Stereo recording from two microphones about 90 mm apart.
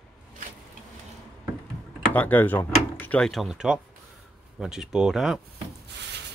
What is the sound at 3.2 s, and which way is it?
Speech, 5° left (ahead or behind).